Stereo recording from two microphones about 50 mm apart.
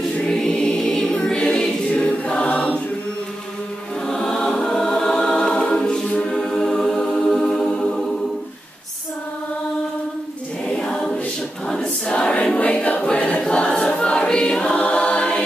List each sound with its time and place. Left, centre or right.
0.2 s choir: centre
1.1 s choir: centre
4.1 s choir: centre
7.2 s music: centre
10.8 s choir: centre